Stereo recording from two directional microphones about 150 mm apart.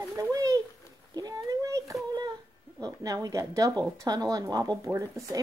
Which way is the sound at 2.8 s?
25° right (ahead or behind).